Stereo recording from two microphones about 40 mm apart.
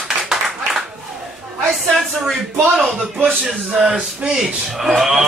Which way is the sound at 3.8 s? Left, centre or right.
Right.